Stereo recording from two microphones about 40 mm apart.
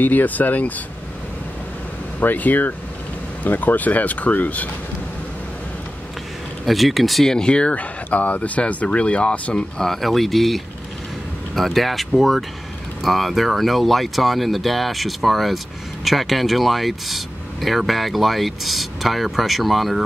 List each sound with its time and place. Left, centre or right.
0.0 s speech: left
2.1 s speech: left
6.6 s speech: centre
7.2 s speech: centre
7.7 s speech: left
9.8 s speech: centre